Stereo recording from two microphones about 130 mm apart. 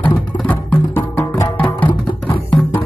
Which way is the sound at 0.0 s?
10° left (ahead or behind).